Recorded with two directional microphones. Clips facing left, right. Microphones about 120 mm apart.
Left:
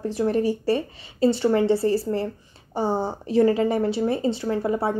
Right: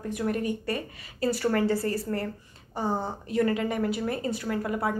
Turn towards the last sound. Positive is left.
turn(degrees=30)  # may be behind; listen again after turning